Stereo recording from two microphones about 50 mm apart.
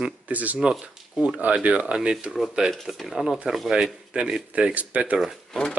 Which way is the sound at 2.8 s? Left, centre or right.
Centre.